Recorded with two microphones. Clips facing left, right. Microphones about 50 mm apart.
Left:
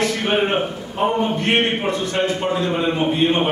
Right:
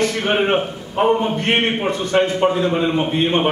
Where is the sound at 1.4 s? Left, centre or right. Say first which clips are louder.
Right 1 dB; right.